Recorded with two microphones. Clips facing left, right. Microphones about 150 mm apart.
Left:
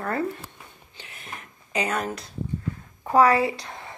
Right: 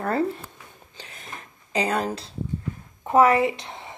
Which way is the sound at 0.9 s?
35° right (ahead or behind).